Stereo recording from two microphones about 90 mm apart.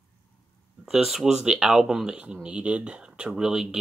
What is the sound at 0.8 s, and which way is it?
Speech, 5° right (ahead or behind).